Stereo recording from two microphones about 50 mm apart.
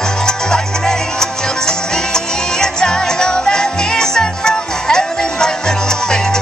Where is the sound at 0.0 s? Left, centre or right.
Centre.